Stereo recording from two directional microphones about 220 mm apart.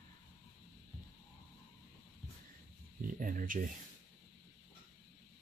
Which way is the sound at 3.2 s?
40° right (ahead or behind).